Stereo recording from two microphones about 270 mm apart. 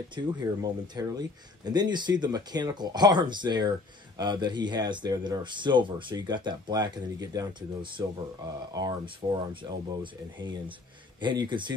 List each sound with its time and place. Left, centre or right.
0.1 s speech: centre
11.1 s speech: centre